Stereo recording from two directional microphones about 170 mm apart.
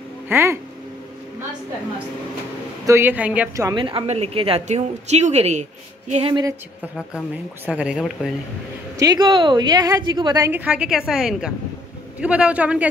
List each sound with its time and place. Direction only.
0.3 s speech: 15° right (ahead or behind)
2.9 s a woman's voice: 10° right (ahead or behind)
3.8 s speech: 35° right (ahead or behind)
7.6 s speech: 5° right (ahead or behind)
8.9 s a woman's voice: 20° right (ahead or behind)